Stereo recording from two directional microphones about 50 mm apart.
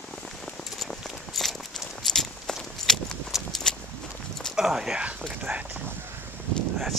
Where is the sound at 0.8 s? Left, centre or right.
Centre.